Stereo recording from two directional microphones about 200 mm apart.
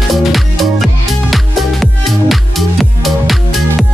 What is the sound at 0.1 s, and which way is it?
Music, centre (ahead or behind).